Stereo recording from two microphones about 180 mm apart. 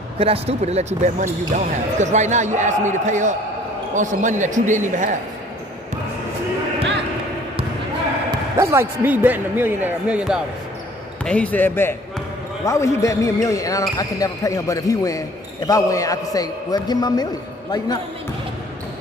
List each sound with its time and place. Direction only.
0.2 s speech: 35° right (ahead or behind)
8.3 s speech: 15° right (ahead or behind)
11.2 s speech: 10° left (ahead or behind)